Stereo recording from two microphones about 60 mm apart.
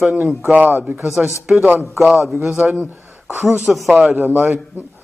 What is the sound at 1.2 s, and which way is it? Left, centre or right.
A man's voice, centre.